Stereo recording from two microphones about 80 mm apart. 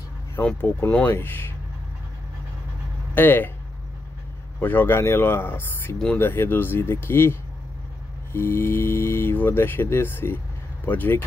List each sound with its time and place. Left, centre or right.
0.4 s speech: left
3.2 s speech: left
4.6 s speech: left